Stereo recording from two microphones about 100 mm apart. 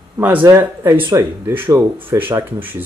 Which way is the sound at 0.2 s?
20° right (ahead or behind).